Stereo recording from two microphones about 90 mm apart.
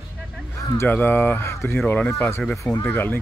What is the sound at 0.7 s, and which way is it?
Speech, 20° left (ahead or behind).